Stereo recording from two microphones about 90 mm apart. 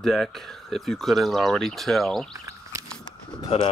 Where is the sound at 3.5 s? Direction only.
90° left.